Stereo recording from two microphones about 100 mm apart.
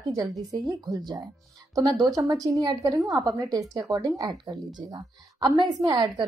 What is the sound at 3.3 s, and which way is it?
A woman's voice, 35° right (ahead or behind).